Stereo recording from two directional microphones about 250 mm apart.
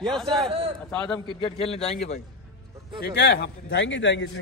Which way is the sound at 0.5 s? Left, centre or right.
Right.